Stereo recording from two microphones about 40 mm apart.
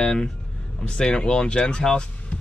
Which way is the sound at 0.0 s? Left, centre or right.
Left.